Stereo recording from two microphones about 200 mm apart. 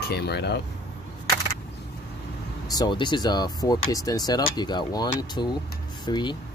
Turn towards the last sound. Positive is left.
turn(degrees=20)  # may be behind; listen again after turning